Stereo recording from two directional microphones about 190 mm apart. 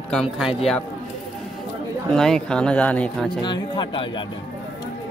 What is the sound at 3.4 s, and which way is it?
Speech, 25° left (ahead or behind).